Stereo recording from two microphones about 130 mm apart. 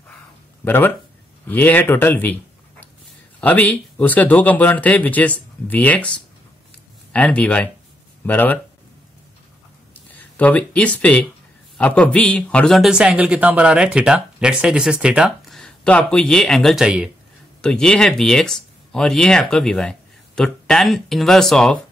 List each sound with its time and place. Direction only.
0.7 s speech: 15° left (ahead or behind)
3.3 s speech: 10° left (ahead or behind)
9.9 s a sound: 10° left (ahead or behind)
11.0 s a man's voice: 10° left (ahead or behind); by 15.6 s 5° right (ahead or behind)
15.6 s speech: 10° left (ahead or behind)
17.6 s speech: 5° left (ahead or behind)